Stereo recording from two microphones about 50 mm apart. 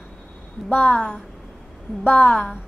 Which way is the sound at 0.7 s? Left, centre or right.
Left.